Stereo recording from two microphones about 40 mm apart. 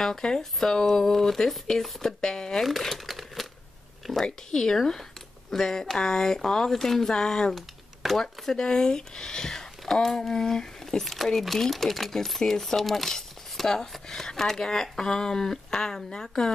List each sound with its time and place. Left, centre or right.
0.0 s speech: centre
2.6 s speech: centre
4.5 s speech: centre
7.5 s speech: centre